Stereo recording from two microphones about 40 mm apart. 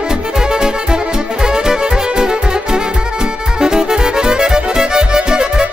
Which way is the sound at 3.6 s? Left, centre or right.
Centre.